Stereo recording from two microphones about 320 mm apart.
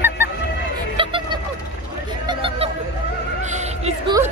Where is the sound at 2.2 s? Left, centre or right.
Centre.